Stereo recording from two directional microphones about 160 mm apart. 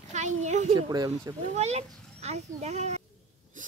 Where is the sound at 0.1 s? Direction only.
45° right (ahead or behind).